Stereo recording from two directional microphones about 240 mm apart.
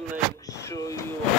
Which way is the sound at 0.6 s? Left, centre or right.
Centre.